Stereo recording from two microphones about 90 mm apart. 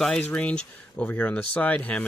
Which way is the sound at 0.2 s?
15° left (ahead or behind).